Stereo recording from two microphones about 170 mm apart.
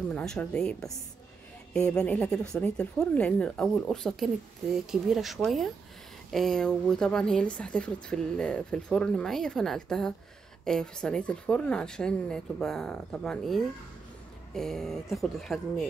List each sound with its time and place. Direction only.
0.1 s speech: 5° left (ahead or behind)